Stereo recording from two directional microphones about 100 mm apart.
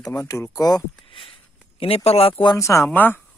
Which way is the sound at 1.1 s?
60° left (ahead or behind).